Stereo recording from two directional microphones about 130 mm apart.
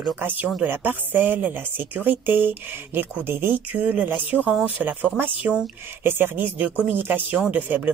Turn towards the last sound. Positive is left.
turn(degrees=-10)  # may be behind; listen again after turning